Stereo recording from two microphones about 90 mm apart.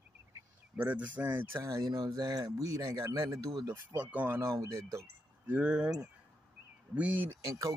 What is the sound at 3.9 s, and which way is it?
Speech, 20° right (ahead or behind).